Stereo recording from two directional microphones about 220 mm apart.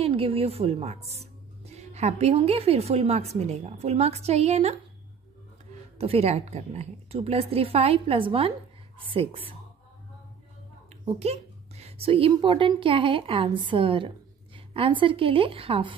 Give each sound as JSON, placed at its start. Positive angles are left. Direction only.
{"t": 0.0, "sound": "a woman's voice", "side_deg": -25}
{"t": 5.9, "sound": "a woman's voice", "side_deg": -25}
{"t": 11.1, "sound": "a woman's voice", "side_deg": -30}